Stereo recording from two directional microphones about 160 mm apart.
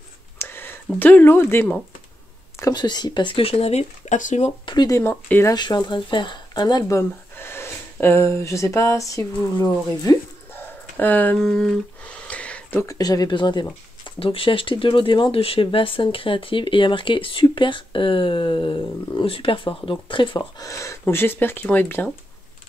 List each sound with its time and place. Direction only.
0.4 s a sound: 15° left (ahead or behind)
0.9 s speech: 10° left (ahead or behind)
2.6 s speech: 25° left (ahead or behind); by 4.5 s 50° left (ahead or behind)
4.6 s speech: 25° left (ahead or behind)
5.6 s speech: 25° left (ahead or behind)
11.0 s speech: 10° left (ahead or behind)
12.8 s speech: 20° left (ahead or behind)